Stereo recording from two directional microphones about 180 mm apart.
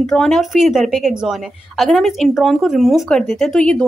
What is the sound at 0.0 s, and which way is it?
Speech, centre (ahead or behind).